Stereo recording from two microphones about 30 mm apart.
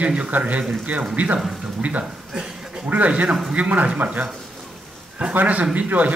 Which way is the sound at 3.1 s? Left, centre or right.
Right.